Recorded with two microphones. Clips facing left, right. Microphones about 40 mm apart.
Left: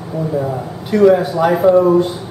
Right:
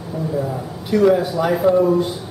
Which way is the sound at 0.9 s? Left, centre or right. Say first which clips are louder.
Left 4 dB; centre.